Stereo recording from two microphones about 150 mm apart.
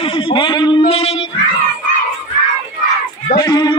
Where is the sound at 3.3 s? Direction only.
25° left (ahead or behind).